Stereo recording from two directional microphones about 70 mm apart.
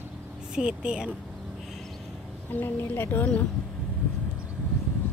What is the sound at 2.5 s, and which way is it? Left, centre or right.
Speech, left.